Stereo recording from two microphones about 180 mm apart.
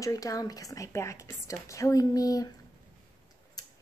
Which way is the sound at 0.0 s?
20° left (ahead or behind).